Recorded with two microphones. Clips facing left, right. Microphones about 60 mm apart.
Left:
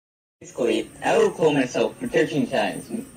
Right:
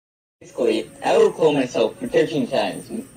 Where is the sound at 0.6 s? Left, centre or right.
Centre.